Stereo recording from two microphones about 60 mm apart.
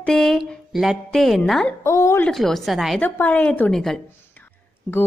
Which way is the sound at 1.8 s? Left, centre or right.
Left.